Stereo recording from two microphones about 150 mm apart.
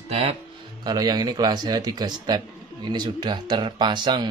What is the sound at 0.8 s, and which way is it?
Speech, 30° right (ahead or behind).